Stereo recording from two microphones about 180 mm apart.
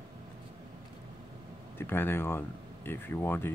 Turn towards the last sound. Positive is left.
turn(degrees=10)  # may be behind; listen again after turning